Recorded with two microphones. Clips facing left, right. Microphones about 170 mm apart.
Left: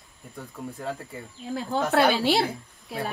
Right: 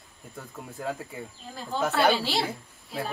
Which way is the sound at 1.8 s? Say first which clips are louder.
Left 2 dB; centre (ahead or behind).